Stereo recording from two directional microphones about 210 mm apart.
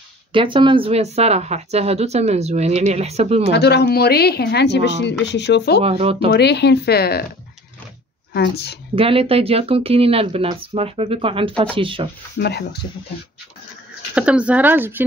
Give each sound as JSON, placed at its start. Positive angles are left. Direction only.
{"t": 0.3, "sound": "speech", "side_deg": -25}
{"t": 3.4, "sound": "a woman's voice", "side_deg": 50}
{"t": 5.8, "sound": "speech", "side_deg": -30}
{"t": 6.3, "sound": "a woman's voice", "side_deg": 50}
{"t": 8.3, "sound": "a woman's voice", "side_deg": 50}
{"t": 8.9, "sound": "speech", "side_deg": -25}
{"t": 12.4, "sound": "a woman's voice", "side_deg": 50}
{"t": 14.1, "sound": "speech", "side_deg": -5}